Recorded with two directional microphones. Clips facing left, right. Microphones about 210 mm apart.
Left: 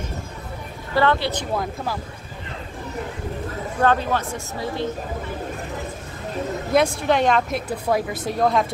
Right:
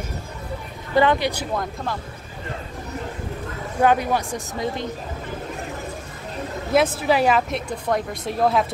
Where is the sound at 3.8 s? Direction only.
15° right (ahead or behind).